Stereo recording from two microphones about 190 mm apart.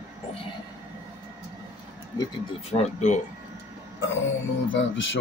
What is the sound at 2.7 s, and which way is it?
Speech, 40° left (ahead or behind).